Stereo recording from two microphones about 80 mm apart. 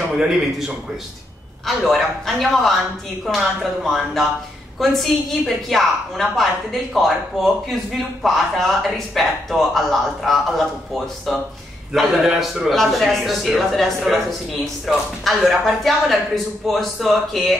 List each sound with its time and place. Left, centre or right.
1.8 s a woman's voice: centre
11.9 s a woman's voice: centre